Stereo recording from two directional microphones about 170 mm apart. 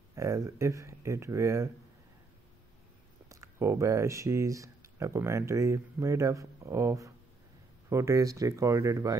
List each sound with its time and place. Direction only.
0.1 s speech: 20° right (ahead or behind)
3.3 s speech: 15° right (ahead or behind)